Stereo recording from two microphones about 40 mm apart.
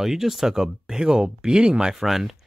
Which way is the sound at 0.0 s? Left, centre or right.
Centre.